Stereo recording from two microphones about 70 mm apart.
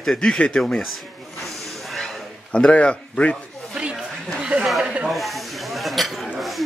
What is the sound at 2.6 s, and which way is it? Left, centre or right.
Speech, centre.